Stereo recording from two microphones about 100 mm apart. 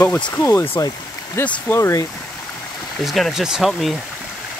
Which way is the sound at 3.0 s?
Centre (ahead or behind).